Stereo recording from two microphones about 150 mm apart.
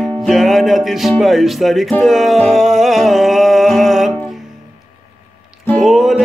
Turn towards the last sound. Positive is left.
turn(degrees=0)  # may be behind; listen again after turning